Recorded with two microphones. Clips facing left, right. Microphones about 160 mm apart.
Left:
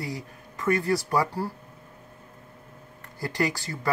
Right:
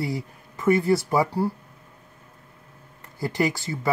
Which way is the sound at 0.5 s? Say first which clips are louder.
Right 5 dB; 5° right (ahead or behind).